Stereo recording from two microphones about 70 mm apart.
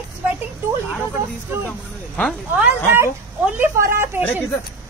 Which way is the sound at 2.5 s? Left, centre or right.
Right.